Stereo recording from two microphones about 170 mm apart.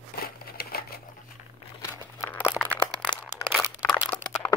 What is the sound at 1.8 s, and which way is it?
Crumpling, 15° left (ahead or behind).